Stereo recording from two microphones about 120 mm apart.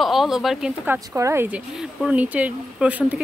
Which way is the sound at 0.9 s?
20° right (ahead or behind).